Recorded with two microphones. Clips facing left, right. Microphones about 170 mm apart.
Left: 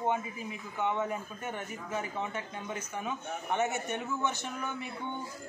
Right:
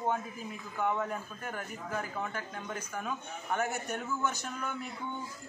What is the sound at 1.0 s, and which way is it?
Speech, 5° left (ahead or behind).